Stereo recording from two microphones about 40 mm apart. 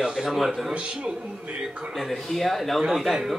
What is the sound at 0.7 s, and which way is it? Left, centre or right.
Speech, right.